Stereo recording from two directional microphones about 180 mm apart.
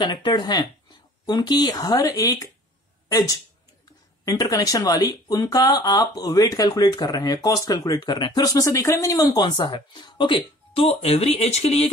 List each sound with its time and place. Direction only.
0.0 s speech: 25° left (ahead or behind)